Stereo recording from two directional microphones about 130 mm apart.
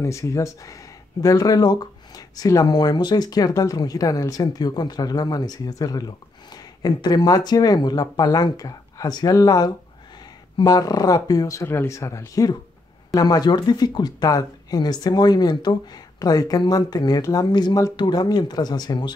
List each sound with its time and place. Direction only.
0.0 s speech: 25° left (ahead or behind)